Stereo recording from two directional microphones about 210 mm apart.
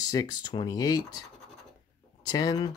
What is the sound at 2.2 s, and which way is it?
Speech, 20° left (ahead or behind).